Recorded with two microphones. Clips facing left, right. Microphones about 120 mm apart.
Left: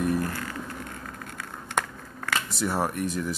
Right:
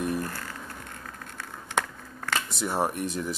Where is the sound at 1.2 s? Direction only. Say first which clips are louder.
Left 2 dB; 55° left (ahead or behind).